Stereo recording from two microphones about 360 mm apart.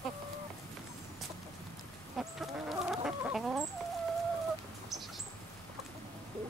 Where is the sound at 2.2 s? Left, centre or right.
Centre.